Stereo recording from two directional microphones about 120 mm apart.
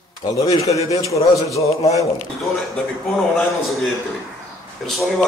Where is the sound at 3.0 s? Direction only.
Centre (ahead or behind).